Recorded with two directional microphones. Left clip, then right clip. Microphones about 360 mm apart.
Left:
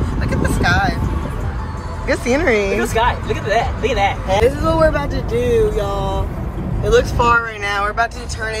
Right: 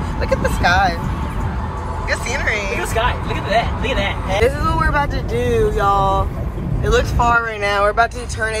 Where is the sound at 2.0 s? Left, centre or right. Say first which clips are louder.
Left 5 dB; centre.